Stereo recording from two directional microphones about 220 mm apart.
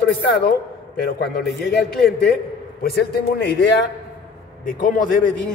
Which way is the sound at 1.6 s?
50° left (ahead or behind).